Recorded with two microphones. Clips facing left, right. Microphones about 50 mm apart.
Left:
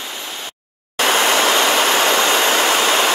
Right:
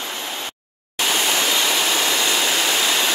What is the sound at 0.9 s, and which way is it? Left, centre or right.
Vehicle, left.